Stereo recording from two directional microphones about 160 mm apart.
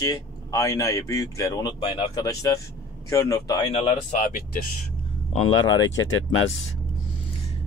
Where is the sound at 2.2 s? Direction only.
20° left (ahead or behind).